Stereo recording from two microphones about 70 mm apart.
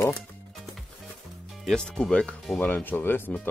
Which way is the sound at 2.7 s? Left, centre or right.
Left.